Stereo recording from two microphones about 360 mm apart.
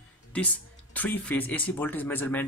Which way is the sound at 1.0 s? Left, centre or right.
Centre.